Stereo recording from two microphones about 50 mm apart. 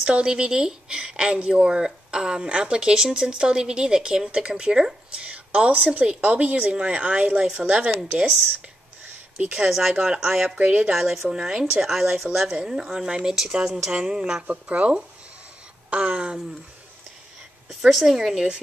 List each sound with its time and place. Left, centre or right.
0.0 s a woman's voice: centre
5.2 s speech: right
7.4 s a woman's voice: centre
9.7 s a woman's voice: centre
10.6 s speech: right
10.9 s a woman's voice: centre
14.5 s speech: right
17.6 s a woman's voice: centre